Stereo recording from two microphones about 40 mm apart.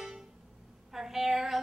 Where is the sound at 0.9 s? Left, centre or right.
Centre.